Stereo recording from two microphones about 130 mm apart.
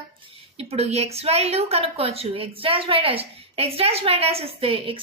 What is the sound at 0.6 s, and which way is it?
A woman's voice, 50° right (ahead or behind).